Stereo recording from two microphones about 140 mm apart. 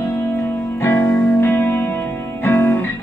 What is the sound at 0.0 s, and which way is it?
Music, 15° left (ahead or behind).